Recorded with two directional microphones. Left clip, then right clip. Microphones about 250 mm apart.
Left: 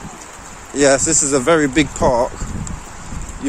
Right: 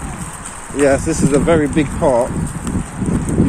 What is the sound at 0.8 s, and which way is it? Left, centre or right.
Speech, left.